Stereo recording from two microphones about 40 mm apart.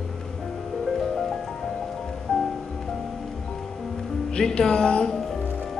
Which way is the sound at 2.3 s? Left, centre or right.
Left.